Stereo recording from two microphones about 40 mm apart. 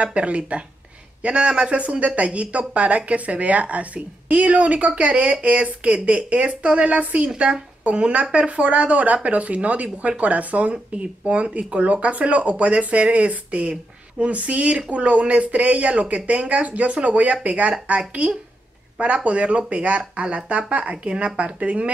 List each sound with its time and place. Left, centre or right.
0.0 s speech: right